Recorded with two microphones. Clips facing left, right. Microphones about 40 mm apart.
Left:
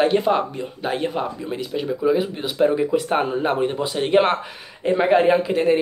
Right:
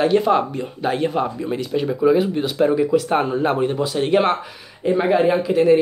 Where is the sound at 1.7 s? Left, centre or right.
Centre.